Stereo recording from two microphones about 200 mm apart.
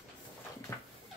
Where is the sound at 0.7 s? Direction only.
10° left (ahead or behind).